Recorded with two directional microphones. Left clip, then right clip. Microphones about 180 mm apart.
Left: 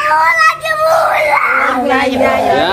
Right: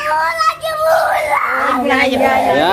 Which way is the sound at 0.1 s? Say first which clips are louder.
Left 5 dB; 10° right (ahead or behind).